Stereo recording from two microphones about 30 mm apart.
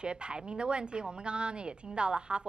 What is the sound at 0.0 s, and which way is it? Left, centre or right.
Speech, right.